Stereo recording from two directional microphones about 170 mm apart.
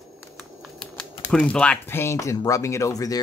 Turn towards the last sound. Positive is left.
turn(degrees=20)  # may be behind; listen again after turning